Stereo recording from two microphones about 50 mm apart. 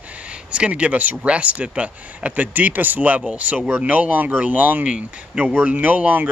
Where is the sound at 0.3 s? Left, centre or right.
Right.